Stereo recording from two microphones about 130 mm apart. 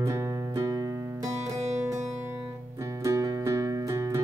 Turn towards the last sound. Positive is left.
turn(degrees=-25)  # may be behind; listen again after turning